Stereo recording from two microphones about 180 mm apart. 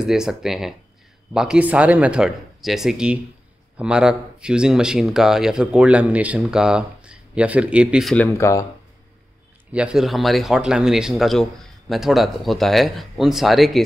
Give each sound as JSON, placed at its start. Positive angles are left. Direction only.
{"t": 0.0, "sound": "speech", "side_deg": -5}
{"t": 8.3, "sound": "speech", "side_deg": 15}
{"t": 9.7, "sound": "speech", "side_deg": -5}